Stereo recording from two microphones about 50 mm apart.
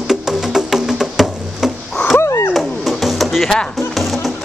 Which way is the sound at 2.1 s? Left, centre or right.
Left.